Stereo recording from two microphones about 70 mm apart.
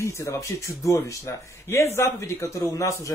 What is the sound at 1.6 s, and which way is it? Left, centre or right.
Speech, left.